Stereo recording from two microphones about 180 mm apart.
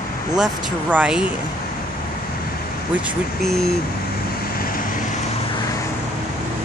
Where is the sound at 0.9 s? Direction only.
5° right (ahead or behind).